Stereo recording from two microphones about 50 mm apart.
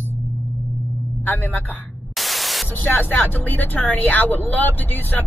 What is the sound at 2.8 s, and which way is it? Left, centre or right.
Speech, left.